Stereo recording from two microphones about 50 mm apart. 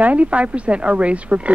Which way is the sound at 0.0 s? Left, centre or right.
Right.